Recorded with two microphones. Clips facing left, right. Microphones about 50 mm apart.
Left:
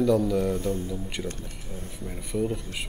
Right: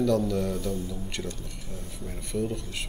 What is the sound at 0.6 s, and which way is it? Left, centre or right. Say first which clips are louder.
Speech: left 3 dB; left.